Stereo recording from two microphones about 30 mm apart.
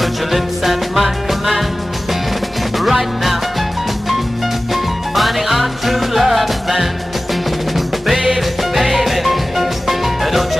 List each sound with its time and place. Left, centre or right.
0.0 s music: centre
2.8 s music: centre
5.1 s music: centre